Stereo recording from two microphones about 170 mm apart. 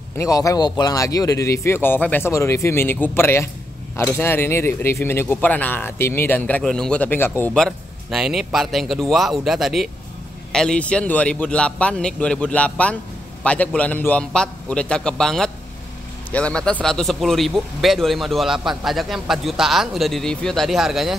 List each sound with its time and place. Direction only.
0.2 s speech: 20° left (ahead or behind)
7.5 s speech: centre (ahead or behind)